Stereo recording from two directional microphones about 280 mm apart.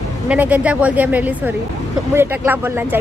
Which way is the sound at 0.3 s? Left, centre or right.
Centre.